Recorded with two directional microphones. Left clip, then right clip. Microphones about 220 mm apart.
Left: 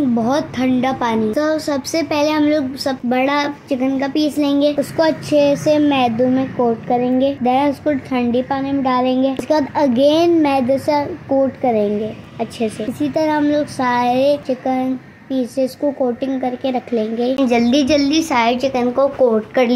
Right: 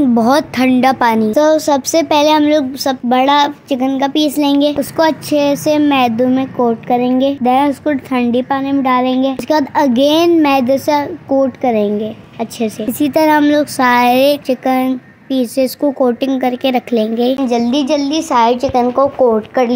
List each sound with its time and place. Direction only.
0.1 s speech: 50° right (ahead or behind)
1.3 s a woman's voice: 35° right (ahead or behind); by 17.4 s 50° right (ahead or behind)
17.4 s a woman's voice: 10° right (ahead or behind)